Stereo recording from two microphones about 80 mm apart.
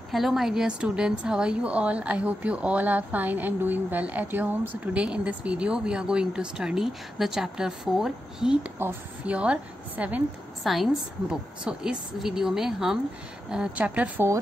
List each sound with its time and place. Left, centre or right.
0.1 s a woman's voice: centre
10.6 s a woman's voice: centre